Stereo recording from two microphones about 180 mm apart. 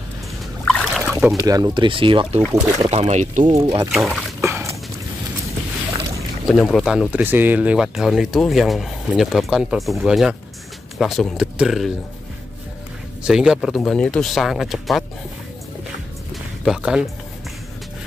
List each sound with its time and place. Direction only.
0.7 s a sound: centre (ahead or behind)
1.1 s speech: 15° right (ahead or behind); by 3.4 s 40° right (ahead or behind)
3.4 s speech: 25° right (ahead or behind)
3.9 s speech: centre (ahead or behind)
4.4 s a sound: 15° right (ahead or behind)
6.5 s speech: centre (ahead or behind)
13.2 s speech: 5° right (ahead or behind)
16.6 s speech: 5° right (ahead or behind)